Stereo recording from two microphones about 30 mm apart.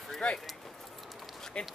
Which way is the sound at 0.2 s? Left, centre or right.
Left.